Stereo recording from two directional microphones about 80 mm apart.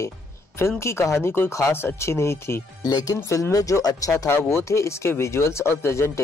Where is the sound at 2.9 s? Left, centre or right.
Left.